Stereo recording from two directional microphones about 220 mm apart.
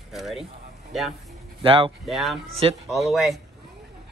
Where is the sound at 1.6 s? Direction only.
25° right (ahead or behind).